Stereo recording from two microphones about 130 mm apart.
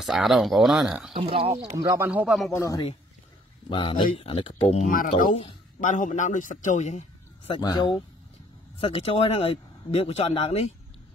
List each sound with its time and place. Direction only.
0.0 s speech: centre (ahead or behind)
1.1 s speech: 45° right (ahead or behind)
2.0 s speech: 10° right (ahead or behind)
2.5 s a man's voice: 25° left (ahead or behind)
3.6 s speech: 40° left (ahead or behind)
4.8 s speech: 90° left
5.3 s speech: 45° left (ahead or behind)
5.8 s a man's voice: 75° left (ahead or behind)
7.5 s speech: 40° left (ahead or behind)